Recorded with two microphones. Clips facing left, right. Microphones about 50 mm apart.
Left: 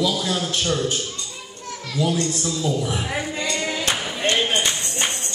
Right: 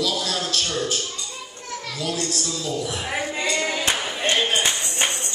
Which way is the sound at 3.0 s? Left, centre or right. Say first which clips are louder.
Even; centre.